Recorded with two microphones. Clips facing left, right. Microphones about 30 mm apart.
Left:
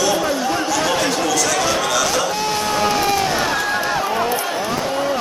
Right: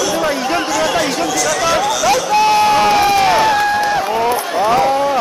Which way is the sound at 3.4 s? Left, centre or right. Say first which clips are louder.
Right 7 dB; centre.